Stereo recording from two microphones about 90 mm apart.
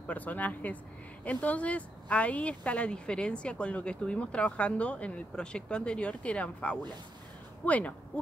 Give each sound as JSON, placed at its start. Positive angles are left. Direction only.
{"t": 0.0, "sound": "speech", "side_deg": 15}